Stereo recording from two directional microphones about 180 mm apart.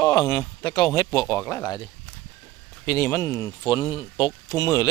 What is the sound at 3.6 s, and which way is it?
Speech, 30° left (ahead or behind).